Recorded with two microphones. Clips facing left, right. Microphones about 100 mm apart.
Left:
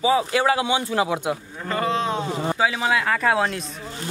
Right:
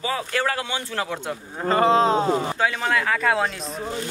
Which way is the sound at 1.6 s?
30° right (ahead or behind).